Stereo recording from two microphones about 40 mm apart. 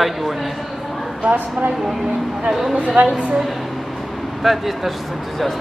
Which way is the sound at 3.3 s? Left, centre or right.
Centre.